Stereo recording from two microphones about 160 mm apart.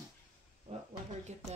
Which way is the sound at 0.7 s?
35° right (ahead or behind).